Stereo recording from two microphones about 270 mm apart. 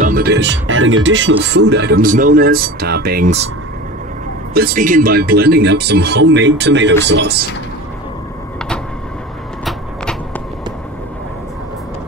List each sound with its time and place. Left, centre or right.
0.0 s speech: right
4.6 s speech: right
9.7 s a sound: centre